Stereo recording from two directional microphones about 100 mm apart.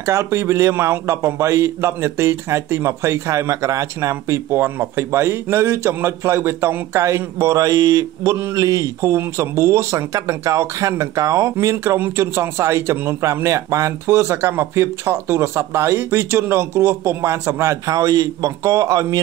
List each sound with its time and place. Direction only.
0.0 s a man's voice: 30° right (ahead or behind)